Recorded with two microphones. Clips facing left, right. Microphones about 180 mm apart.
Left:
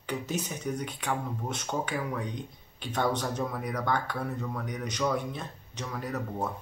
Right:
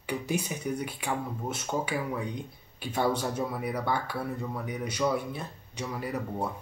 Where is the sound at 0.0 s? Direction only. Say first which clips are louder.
Right 2 dB; 10° right (ahead or behind).